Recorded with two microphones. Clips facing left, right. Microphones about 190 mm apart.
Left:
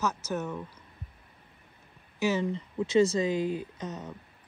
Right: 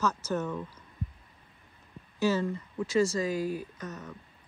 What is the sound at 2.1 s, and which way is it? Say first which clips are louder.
Speech: even; 10° left (ahead or behind).